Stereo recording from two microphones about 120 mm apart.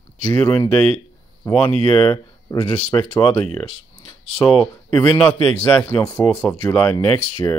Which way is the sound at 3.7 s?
55° left (ahead or behind).